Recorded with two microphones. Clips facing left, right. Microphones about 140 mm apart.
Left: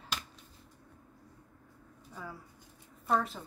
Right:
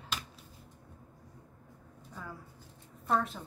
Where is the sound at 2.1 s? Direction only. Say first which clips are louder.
Even; 5° left (ahead or behind).